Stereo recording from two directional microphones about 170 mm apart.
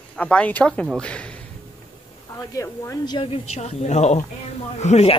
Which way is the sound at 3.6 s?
40° left (ahead or behind).